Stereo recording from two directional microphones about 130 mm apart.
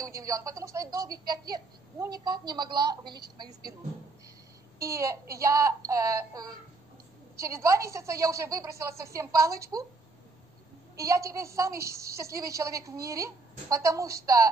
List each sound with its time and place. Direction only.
0.0 s speech: 25° right (ahead or behind)
4.7 s speech: 25° right (ahead or behind)
11.0 s speech: 25° right (ahead or behind)